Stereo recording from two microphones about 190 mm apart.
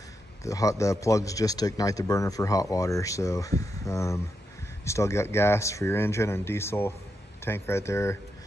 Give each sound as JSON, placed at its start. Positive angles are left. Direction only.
{"t": 0.4, "sound": "speech", "side_deg": 15}